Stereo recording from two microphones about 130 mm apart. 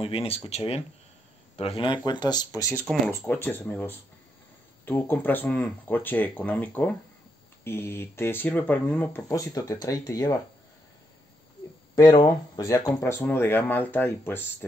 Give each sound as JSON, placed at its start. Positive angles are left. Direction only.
{"t": 0.0, "sound": "speech", "side_deg": 50}
{"t": 3.1, "sound": "speech", "side_deg": 15}
{"t": 9.3, "sound": "speech", "side_deg": 25}
{"t": 11.9, "sound": "speech", "side_deg": 30}